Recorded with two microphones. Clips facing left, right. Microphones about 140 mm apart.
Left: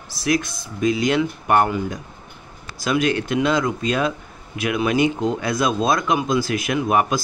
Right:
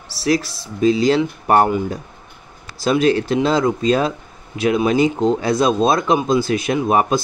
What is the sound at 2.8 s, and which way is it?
Speech, 30° right (ahead or behind).